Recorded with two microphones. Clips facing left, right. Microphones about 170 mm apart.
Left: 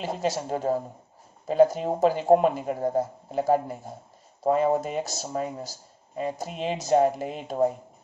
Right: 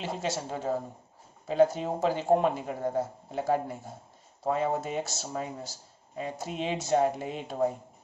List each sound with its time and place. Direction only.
0.0 s a man's voice: 45° left (ahead or behind)